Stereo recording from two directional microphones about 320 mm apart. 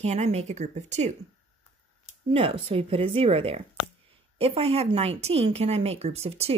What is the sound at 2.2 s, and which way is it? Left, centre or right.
A woman's voice, centre.